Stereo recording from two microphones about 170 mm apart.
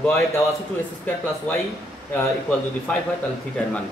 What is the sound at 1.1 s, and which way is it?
A man's voice, 10° left (ahead or behind).